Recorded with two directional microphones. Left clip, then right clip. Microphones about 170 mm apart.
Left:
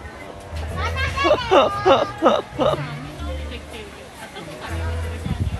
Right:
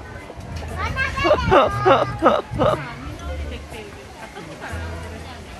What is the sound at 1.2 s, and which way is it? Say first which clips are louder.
Speech: even; 5° left (ahead or behind).